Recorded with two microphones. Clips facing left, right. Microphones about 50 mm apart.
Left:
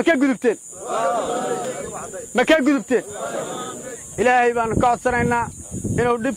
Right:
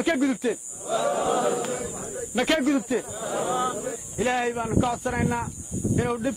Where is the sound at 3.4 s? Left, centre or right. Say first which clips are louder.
Right 3 dB; right.